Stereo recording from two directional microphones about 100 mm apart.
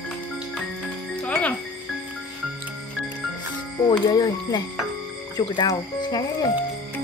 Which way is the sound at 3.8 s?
40° left (ahead or behind).